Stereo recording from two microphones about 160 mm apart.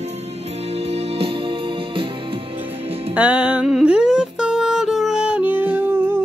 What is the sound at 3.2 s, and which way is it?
Music, 5° right (ahead or behind).